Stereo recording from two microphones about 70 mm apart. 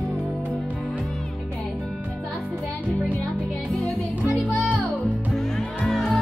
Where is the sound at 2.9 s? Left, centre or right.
Centre.